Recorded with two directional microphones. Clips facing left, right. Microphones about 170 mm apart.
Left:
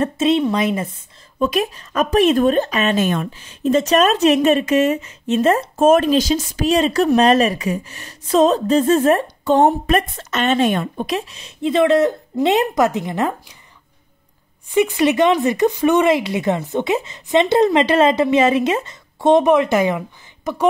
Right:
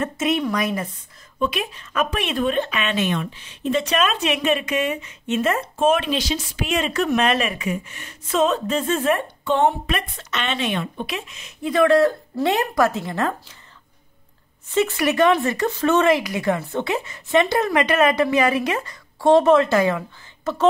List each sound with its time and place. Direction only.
0.0 s speech: 30° left (ahead or behind)
1.4 s speech: 40° left (ahead or behind); by 13.6 s 15° left (ahead or behind)
14.7 s speech: 15° left (ahead or behind)